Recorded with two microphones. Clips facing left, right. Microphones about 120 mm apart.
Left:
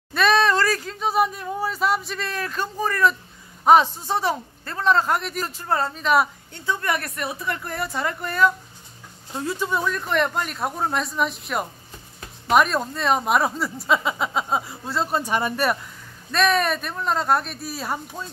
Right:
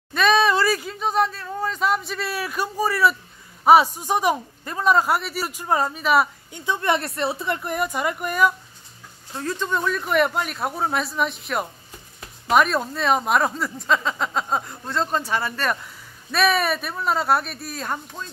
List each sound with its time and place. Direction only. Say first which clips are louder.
0.1 s a sound: right 1 dB; centre (ahead or behind)
1.2 s a man's voice: left 1 dB; 15° left (ahead or behind); by 6.6 s 5° right (ahead or behind)
6.6 s a woman's voice: right 3 dB; 20° right (ahead or behind)
9.3 s speech: even; 15° left (ahead or behind)
15.8 s speech: left 1 dB; 5° right (ahead or behind)